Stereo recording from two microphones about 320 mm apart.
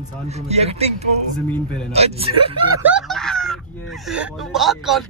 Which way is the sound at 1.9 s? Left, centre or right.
Centre.